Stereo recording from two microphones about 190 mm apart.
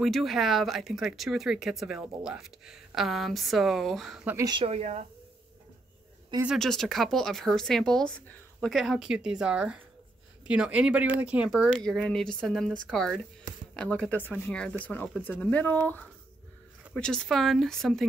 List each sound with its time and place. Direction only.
0.0 s speech: centre (ahead or behind)
4.5 s speech: 30° right (ahead or behind)
6.4 s speech: centre (ahead or behind)